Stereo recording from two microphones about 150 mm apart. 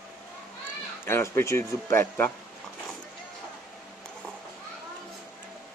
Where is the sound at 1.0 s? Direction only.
15° left (ahead or behind).